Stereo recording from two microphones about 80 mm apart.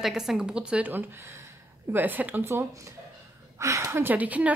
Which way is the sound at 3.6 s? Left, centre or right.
Right.